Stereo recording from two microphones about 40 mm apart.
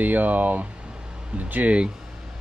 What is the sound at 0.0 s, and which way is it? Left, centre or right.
Speech, right.